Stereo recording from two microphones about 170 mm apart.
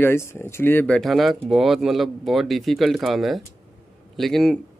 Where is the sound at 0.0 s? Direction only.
15° left (ahead or behind).